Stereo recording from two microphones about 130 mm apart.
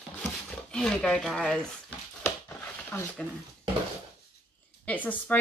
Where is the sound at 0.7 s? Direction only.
5° left (ahead or behind).